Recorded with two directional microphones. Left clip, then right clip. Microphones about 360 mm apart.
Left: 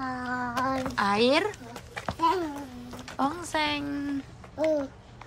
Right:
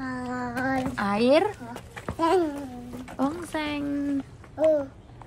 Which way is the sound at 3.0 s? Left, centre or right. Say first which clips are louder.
Even; centre.